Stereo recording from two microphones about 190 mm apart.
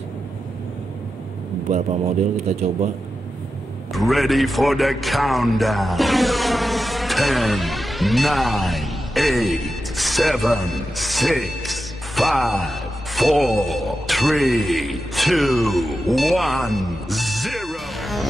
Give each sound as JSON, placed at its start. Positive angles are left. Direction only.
{"t": 1.7, "sound": "a man's voice", "side_deg": -35}
{"t": 3.9, "sound": "speech", "side_deg": 0}